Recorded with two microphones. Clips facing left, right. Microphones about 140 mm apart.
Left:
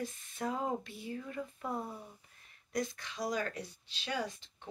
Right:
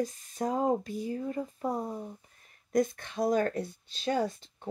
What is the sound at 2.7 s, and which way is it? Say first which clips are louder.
Speech: right 9 dB; 50° right (ahead or behind).